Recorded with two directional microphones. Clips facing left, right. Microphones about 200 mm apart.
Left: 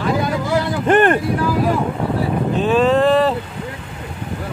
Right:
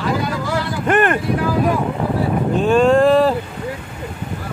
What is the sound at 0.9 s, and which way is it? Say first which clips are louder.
Speech: left 2 dB; 30° left (ahead or behind).